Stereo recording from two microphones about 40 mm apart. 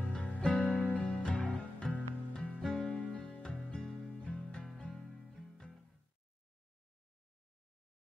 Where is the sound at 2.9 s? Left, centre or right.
Left.